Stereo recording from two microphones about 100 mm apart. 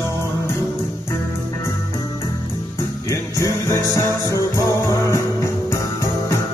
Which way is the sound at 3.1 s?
30° left (ahead or behind).